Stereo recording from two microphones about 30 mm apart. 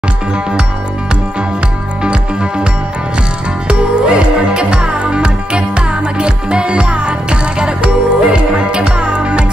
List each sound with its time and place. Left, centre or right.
3.6 s music: right